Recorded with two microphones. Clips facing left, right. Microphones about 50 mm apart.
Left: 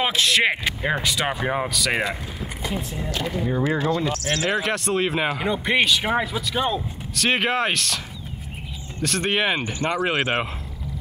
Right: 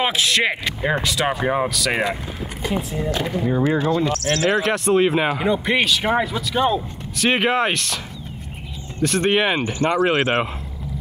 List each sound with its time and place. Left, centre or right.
0.1 s speech: centre
2.6 s speech: centre
3.1 s speech: right
4.0 s speech: centre
9.0 s speech: centre
9.6 s speech: centre
10.0 s speech: centre